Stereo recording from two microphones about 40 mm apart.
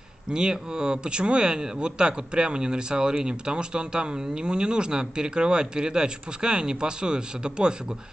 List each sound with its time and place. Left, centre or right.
0.3 s speech: centre